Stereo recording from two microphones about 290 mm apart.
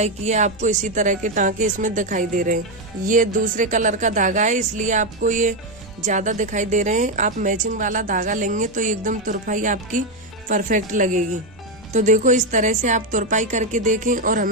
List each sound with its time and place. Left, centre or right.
0.0 s a woman's voice: right